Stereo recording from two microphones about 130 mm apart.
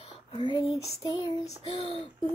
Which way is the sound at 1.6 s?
50° left (ahead or behind).